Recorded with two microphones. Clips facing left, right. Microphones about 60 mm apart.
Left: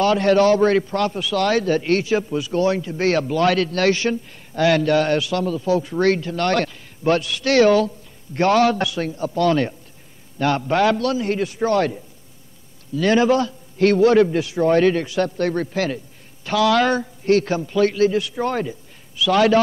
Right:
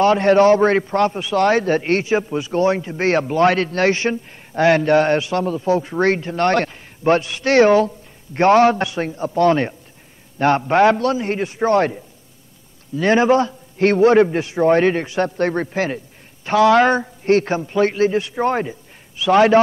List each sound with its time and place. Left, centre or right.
0.0 s a man's voice: right